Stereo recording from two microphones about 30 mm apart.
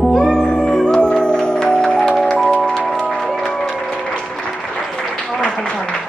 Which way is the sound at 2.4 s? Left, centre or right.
Left.